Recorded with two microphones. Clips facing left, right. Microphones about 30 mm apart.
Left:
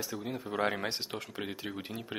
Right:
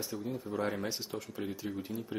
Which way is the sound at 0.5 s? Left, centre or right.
Left.